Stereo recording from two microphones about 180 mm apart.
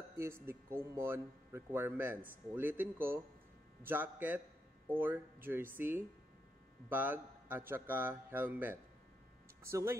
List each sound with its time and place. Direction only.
0.2 s speech: 15° right (ahead or behind)